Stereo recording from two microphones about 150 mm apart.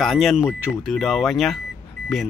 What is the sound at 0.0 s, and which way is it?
Speech, centre (ahead or behind).